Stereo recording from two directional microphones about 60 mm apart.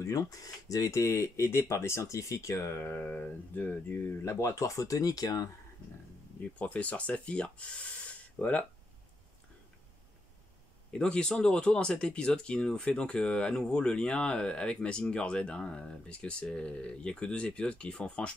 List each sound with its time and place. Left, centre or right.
0.0 s speech: left
3.0 s speech: centre
3.5 s speech: left
4.2 s speech: left
6.6 s speech: left
10.9 s speech: centre